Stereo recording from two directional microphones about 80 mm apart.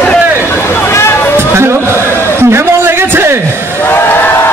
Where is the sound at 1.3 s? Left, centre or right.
Right.